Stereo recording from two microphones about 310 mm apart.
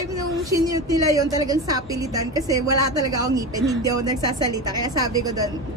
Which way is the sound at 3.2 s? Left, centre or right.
Centre.